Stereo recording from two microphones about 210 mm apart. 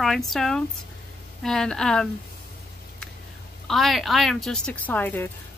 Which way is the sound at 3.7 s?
Centre (ahead or behind).